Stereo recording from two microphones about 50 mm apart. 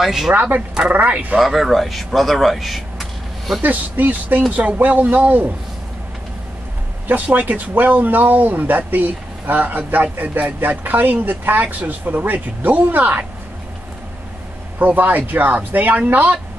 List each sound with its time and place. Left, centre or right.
0.0 s speech: centre
0.3 s speech: right
1.4 s speech: centre
3.6 s speech: right
7.1 s speech: right
11.6 s speech: right
12.0 s speech: right
14.8 s speech: right